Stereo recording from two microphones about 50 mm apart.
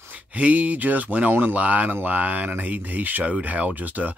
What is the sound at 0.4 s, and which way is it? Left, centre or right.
Speech, right.